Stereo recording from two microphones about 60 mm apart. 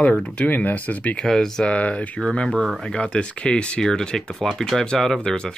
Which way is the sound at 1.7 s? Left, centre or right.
Left.